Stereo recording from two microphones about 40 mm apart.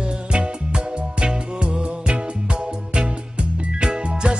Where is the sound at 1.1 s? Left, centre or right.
Right.